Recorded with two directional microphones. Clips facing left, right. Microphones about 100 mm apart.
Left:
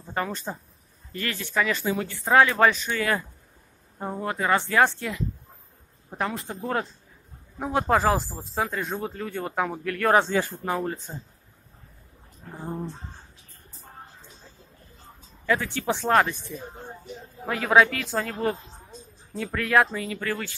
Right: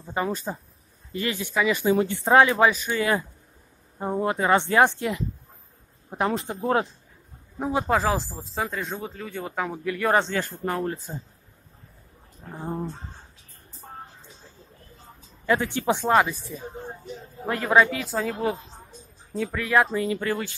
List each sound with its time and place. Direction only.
0.0 s speech: 10° right (ahead or behind)
2.6 s speech: 5° right (ahead or behind)
2.9 s speech: 20° right (ahead or behind)
7.5 s speech: centre (ahead or behind)
10.1 s speech: 10° left (ahead or behind)
15.4 s speech: 20° right (ahead or behind)
20.2 s speech: 20° right (ahead or behind)